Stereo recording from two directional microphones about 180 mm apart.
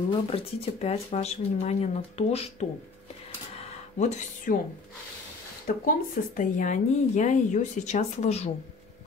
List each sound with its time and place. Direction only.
0.1 s speech: 35° left (ahead or behind)
3.5 s a sound: 40° left (ahead or behind)
5.7 s speech: 50° left (ahead or behind)